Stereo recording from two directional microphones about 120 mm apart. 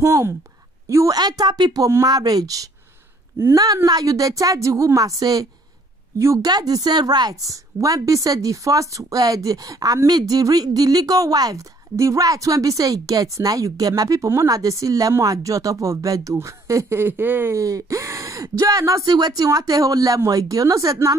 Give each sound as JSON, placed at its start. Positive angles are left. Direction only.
{"t": 0.0, "sound": "a woman's voice", "side_deg": -25}